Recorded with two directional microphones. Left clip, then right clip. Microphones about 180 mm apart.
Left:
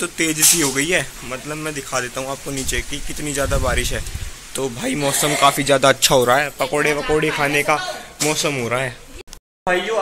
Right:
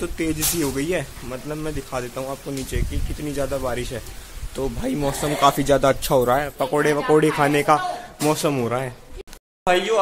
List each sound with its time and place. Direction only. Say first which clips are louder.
0.0 s speech: left 6 dB; centre (ahead or behind)
6.8 s speech: right 1 dB; 25° right (ahead or behind)
8.6 s speech: left 3 dB; 10° right (ahead or behind)